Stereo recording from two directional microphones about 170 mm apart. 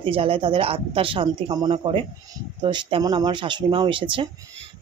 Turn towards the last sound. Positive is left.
turn(degrees=-30)  # may be behind; listen again after turning